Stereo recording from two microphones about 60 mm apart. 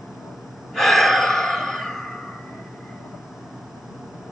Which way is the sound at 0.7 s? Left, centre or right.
Centre.